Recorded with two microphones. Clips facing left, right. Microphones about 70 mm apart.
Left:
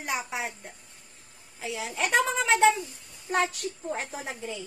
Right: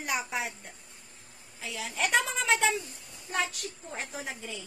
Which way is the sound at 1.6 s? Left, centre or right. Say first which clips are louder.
Left 2 dB; left.